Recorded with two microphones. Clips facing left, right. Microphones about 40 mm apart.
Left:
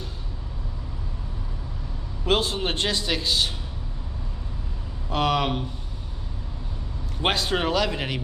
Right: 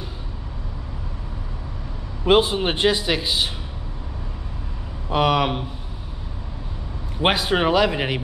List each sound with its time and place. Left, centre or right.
2.2 s a man's voice: centre
5.1 s speech: centre
7.2 s speech: centre